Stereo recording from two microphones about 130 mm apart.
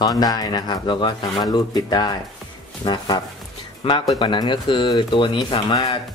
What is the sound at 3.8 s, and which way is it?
Speech, 50° left (ahead or behind).